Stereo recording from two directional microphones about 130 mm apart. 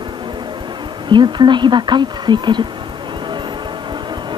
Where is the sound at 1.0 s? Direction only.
35° right (ahead or behind).